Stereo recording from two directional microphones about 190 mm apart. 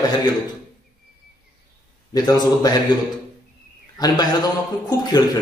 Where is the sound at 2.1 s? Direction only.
20° left (ahead or behind).